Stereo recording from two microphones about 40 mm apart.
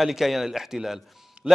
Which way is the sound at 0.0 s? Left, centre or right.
Centre.